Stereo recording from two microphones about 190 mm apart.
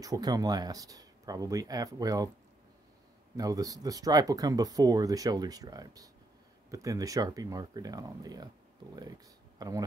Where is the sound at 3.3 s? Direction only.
20° right (ahead or behind).